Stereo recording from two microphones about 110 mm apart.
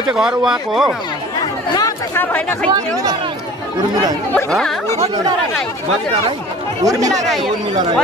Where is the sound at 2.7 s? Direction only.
35° right (ahead or behind).